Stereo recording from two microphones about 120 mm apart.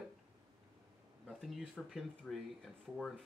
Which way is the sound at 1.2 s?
Centre (ahead or behind).